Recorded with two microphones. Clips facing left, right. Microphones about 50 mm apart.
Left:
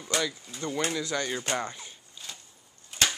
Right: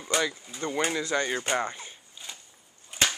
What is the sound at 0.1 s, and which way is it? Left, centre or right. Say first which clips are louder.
Speech: right 2 dB; centre.